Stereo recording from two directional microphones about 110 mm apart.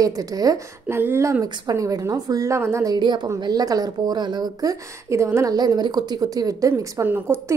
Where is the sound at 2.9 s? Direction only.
40° right (ahead or behind).